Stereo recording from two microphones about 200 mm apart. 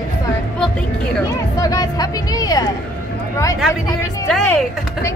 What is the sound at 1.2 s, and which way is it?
Music, 20° left (ahead or behind).